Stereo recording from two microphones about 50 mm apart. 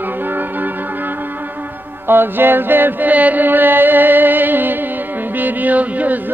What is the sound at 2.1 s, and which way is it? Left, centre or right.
Chant, right.